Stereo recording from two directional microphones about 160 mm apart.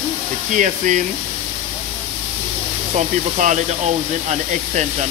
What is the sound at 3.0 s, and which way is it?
Speech, 50° right (ahead or behind).